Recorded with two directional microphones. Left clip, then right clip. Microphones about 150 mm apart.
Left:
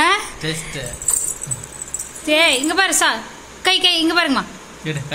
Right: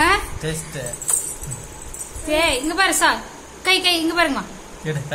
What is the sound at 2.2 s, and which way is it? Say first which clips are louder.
A woman's voice: left 4 dB; 35° left (ahead or behind).